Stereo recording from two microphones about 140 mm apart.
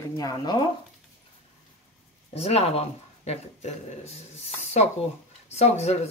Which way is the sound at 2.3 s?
45° left (ahead or behind).